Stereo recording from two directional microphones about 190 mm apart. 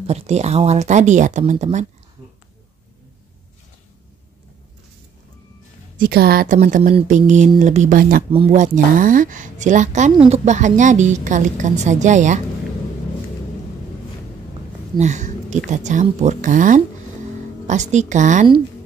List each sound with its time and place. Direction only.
0.0 s a woman's voice: 35° right (ahead or behind)
5.9 s speech: 55° right (ahead or behind)
8.3 s speech: 30° right (ahead or behind)
8.5 s a woman's voice: 45° right (ahead or behind)
15.0 s a woman's voice: 40° right (ahead or behind)